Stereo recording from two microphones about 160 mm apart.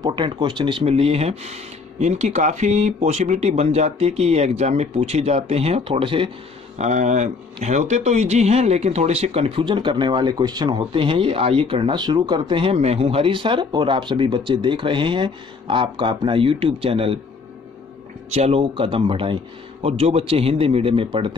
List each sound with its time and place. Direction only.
0.0 s speech: 30° right (ahead or behind)
6.8 s speech: 45° right (ahead or behind)
18.3 s speech: 40° right (ahead or behind)